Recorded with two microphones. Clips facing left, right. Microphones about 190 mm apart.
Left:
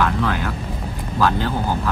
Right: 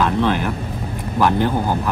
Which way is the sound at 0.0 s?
25° right (ahead or behind).